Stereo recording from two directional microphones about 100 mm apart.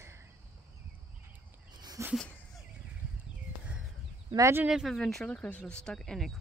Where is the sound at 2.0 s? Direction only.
30° right (ahead or behind).